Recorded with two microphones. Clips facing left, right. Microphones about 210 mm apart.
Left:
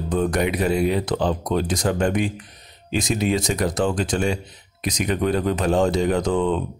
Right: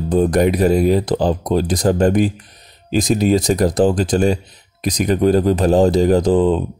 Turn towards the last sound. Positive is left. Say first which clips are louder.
# right 7 dB
turn(degrees=-35)  # may be behind; listen again after turning